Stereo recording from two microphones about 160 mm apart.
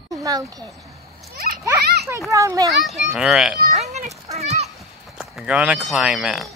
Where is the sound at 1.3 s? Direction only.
75° right (ahead or behind).